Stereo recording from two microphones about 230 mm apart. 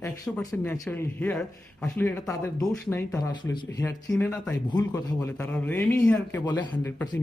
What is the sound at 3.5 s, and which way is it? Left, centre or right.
Speech, centre.